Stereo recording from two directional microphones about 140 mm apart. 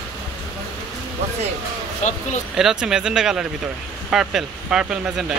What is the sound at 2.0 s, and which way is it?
Speech, 55° left (ahead or behind).